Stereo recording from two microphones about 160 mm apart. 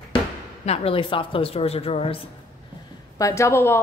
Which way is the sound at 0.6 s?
40° left (ahead or behind).